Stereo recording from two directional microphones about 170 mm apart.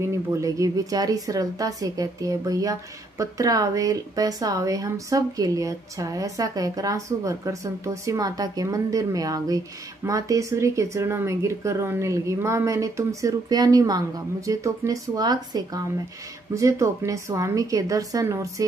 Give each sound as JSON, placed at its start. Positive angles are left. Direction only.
{"t": 0.1, "sound": "speech", "side_deg": -20}